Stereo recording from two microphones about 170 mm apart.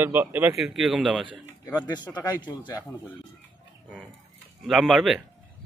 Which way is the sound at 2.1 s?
20° left (ahead or behind).